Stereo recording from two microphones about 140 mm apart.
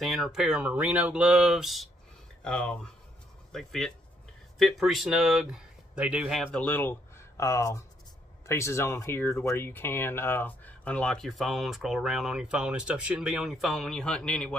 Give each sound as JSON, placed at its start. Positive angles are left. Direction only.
{"t": 0.0, "sound": "speech", "side_deg": 0}
{"t": 6.5, "sound": "speech", "side_deg": 10}